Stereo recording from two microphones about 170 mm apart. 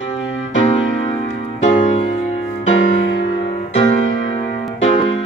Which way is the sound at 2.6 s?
90° left.